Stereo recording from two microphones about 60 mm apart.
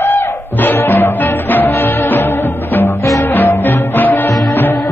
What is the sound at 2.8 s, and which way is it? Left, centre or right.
Music, left.